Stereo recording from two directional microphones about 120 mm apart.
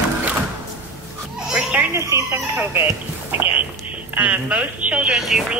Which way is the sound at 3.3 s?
15° right (ahead or behind).